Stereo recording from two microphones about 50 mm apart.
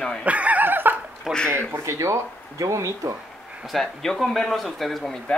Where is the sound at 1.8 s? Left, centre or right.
Right.